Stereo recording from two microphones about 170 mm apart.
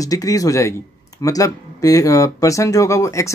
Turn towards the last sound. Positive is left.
turn(degrees=20)  # may be behind; listen again after turning